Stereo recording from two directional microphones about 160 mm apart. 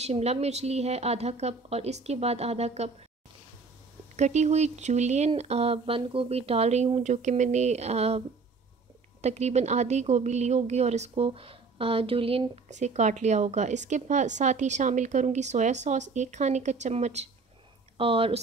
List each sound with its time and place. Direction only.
0.0 s a woman's voice: 45° right (ahead or behind)
4.2 s a woman's voice: 45° right (ahead or behind)
9.2 s a woman's voice: 45° right (ahead or behind)